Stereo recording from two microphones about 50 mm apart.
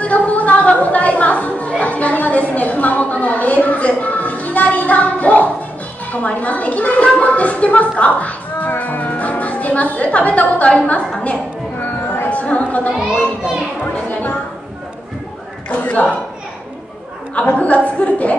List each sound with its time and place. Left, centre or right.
0.0 s a woman's voice: left
11.8 s a sound: left
12.3 s a woman's voice: left
15.7 s a woman's voice: left
17.6 s a woman's voice: left